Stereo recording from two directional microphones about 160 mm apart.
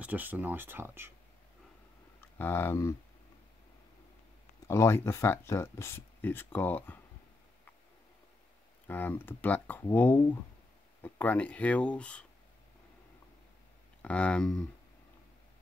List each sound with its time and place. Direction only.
0.0 s speech: 10° right (ahead or behind)
2.1 s speech: 15° left (ahead or behind)
4.6 s speech: 15° left (ahead or behind)
8.8 s speech: 10° left (ahead or behind)
14.0 s speech: 5° left (ahead or behind)